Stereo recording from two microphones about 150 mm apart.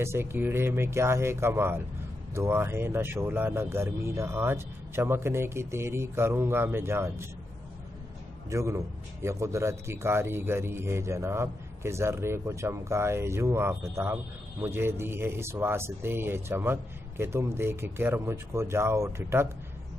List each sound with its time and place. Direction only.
0.0 s speech: 15° right (ahead or behind)
8.5 s speech: 20° right (ahead or behind)